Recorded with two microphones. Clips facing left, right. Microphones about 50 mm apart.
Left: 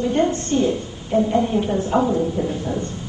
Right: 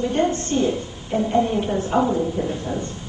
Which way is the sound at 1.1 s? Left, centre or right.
Centre.